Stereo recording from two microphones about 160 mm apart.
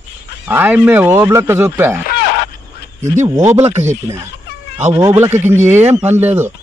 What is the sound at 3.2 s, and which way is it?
Speech, 20° right (ahead or behind).